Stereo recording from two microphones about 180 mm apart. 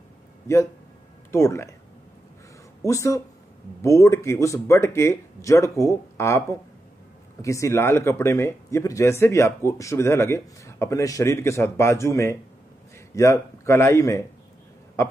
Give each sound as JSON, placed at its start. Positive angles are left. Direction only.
{"t": 1.3, "sound": "speech", "side_deg": 15}
{"t": 2.8, "sound": "speech", "side_deg": 15}
{"t": 7.4, "sound": "speech", "side_deg": 15}